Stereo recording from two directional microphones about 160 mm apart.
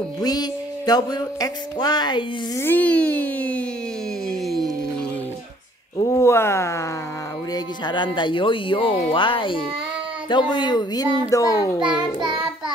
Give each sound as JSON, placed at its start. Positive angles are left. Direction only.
{"t": 0.2, "sound": "music", "side_deg": 25}
{"t": 2.6, "sound": "speech", "side_deg": 10}
{"t": 4.3, "sound": "a sound", "side_deg": 0}
{"t": 6.0, "sound": "music", "side_deg": 20}
{"t": 7.5, "sound": "speech", "side_deg": 30}
{"t": 10.3, "sound": "music", "side_deg": 30}